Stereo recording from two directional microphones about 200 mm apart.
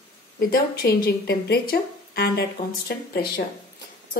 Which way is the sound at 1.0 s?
50° left (ahead or behind).